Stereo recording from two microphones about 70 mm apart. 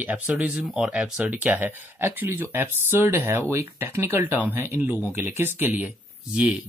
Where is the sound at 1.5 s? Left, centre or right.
Right.